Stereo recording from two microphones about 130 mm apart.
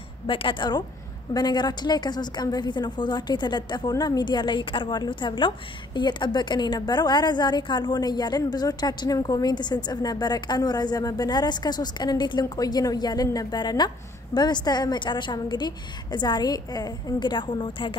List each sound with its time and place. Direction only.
0.3 s a woman's voice: 40° left (ahead or behind)